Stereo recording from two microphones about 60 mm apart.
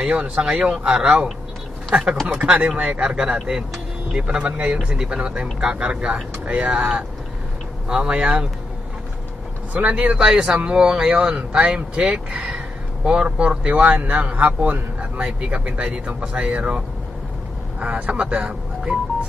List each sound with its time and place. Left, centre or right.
0.0 s a man's voice: centre
7.9 s speech: centre
9.8 s speech: centre